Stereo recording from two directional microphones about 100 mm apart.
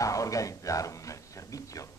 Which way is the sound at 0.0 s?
35° left (ahead or behind).